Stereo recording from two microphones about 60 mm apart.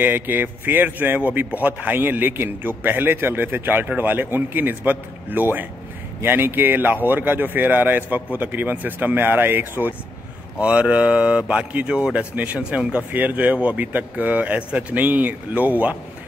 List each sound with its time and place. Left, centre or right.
0.0 s a man's voice: right
10.6 s speech: right